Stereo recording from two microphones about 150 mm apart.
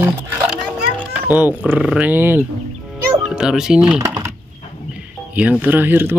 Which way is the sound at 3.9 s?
25° right (ahead or behind).